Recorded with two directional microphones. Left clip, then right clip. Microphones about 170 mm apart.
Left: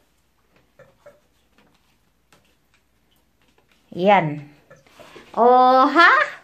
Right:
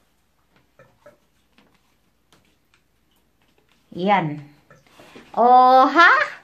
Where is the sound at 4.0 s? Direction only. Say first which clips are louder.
Left 4 dB; 15° left (ahead or behind).